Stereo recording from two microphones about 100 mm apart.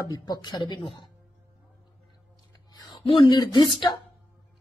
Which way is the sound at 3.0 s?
60° left (ahead or behind).